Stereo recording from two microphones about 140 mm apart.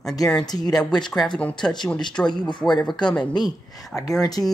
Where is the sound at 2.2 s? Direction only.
30° left (ahead or behind).